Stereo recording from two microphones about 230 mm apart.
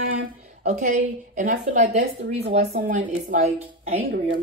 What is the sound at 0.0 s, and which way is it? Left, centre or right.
A woman's voice, right.